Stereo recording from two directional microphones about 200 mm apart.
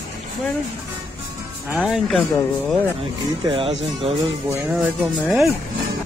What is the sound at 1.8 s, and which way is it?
Speech, 5° left (ahead or behind).